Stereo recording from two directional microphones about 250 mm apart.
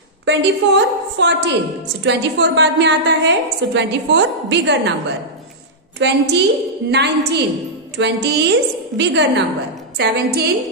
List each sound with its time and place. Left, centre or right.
0.2 s a woman's voice: right
5.9 s a woman's voice: right